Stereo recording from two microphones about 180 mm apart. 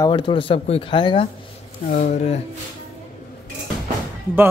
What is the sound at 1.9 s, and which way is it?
Speech, 45° left (ahead or behind).